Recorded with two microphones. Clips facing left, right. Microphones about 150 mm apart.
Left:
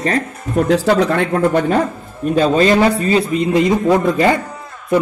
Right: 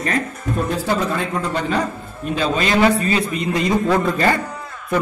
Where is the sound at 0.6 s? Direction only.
80° left; by 1.8 s 55° left (ahead or behind).